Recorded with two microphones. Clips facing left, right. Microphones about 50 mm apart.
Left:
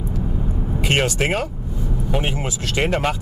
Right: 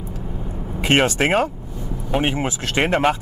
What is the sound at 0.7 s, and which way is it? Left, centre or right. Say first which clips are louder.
Speech: right 3 dB; right.